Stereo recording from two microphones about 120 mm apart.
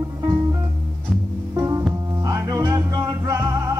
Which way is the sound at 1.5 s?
30° right (ahead or behind).